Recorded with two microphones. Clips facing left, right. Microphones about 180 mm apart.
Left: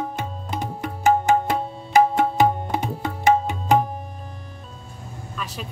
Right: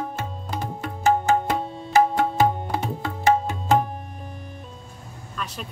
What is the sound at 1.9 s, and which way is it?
Music, 15° left (ahead or behind).